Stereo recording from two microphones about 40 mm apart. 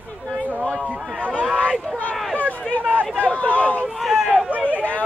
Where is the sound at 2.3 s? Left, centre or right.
Left.